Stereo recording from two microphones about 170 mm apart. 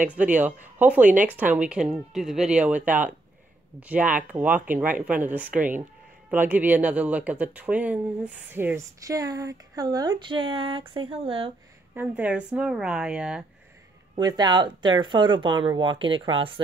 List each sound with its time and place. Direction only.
0.0 s speech: 10° right (ahead or behind); by 11.5 s 30° right (ahead or behind)
11.9 s speech: 10° right (ahead or behind)
14.1 s speech: 25° right (ahead or behind)